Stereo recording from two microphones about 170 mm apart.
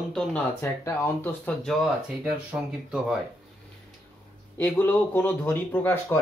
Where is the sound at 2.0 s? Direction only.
5° right (ahead or behind).